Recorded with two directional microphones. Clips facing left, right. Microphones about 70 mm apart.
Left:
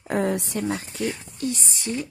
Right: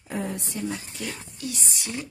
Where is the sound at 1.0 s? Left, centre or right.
Left.